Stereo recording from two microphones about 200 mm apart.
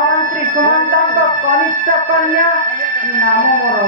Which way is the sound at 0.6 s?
45° right (ahead or behind).